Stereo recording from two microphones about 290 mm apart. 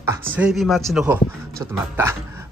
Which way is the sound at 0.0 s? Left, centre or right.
Centre.